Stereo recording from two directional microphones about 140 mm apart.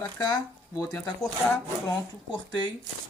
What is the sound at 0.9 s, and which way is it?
Speech, 25° left (ahead or behind).